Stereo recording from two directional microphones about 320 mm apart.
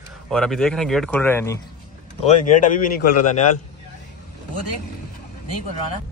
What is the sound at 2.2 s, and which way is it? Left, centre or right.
Speech, left.